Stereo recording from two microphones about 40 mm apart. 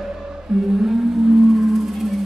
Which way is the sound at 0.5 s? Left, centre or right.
Right.